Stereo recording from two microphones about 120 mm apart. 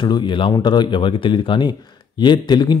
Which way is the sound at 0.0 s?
40° left (ahead or behind).